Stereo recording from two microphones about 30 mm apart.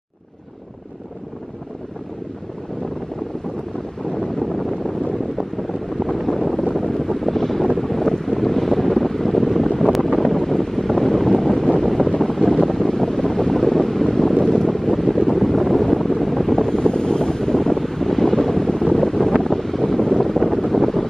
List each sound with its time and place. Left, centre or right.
4.1 s wind noise: centre
6.1 s wind noise: centre
13.2 s wind: centre
15.3 s wind noise: centre
16.7 s wind noise: left
20.1 s boat: centre